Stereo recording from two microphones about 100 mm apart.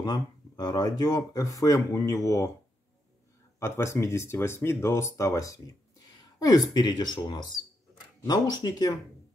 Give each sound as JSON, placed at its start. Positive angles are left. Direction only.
{"t": 0.0, "sound": "speech", "side_deg": 45}
{"t": 3.5, "sound": "speech", "side_deg": 25}